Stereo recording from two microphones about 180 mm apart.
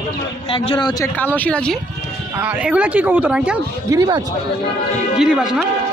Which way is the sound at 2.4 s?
5° right (ahead or behind).